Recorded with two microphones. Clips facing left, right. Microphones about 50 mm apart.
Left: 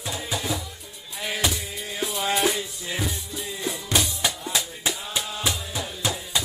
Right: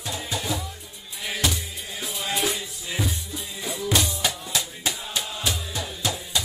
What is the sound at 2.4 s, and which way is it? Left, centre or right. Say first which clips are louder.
Music: left 3 dB; centre.